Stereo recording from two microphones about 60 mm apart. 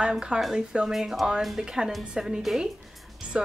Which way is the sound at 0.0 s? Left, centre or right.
Centre.